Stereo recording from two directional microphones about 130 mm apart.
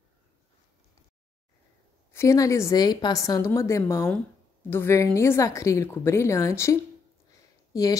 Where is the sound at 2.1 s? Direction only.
20° left (ahead or behind).